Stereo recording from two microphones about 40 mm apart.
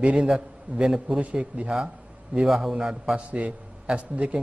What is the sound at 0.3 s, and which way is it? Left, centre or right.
Speech, centre.